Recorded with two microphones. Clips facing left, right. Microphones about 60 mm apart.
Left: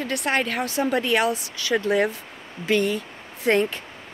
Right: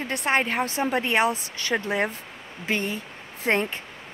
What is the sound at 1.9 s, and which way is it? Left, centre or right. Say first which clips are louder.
Speech: left 4 dB; right.